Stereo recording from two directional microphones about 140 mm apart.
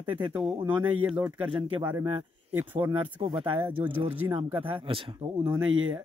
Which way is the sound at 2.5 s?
15° right (ahead or behind).